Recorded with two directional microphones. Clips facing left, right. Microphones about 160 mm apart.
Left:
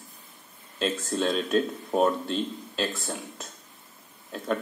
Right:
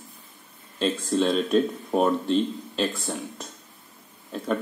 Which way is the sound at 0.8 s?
Centre (ahead or behind).